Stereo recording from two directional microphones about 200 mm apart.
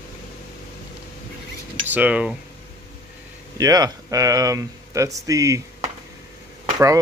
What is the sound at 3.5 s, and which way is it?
Speech, 20° right (ahead or behind).